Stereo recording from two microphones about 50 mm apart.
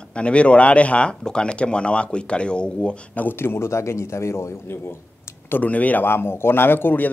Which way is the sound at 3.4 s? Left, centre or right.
Left.